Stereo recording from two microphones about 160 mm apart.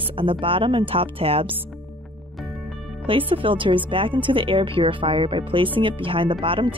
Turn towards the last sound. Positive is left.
turn(degrees=-35)  # may be behind; listen again after turning